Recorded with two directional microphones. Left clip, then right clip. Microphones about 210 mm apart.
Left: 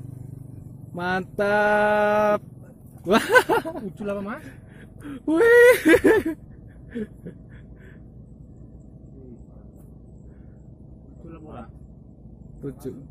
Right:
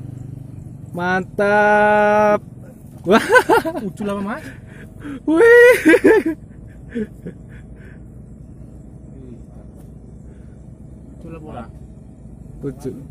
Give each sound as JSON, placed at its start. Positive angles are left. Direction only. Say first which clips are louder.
{"t": 0.9, "sound": "speech", "louder": "right 6 dB", "side_deg": 0}
{"t": 4.0, "sound": "speech", "louder": "right 4 dB", "side_deg": -45}
{"t": 5.0, "sound": "speech", "louder": "right 6 dB", "side_deg": 5}
{"t": 6.9, "sound": "a sound", "louder": "right 7 dB", "side_deg": 0}
{"t": 11.2, "sound": "vehicle", "louder": "right 7 dB", "side_deg": -40}